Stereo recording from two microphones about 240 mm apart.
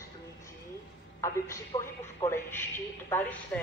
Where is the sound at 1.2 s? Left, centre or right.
Centre.